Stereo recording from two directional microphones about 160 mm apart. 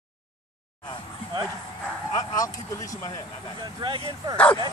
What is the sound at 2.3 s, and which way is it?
Speech, 20° left (ahead or behind).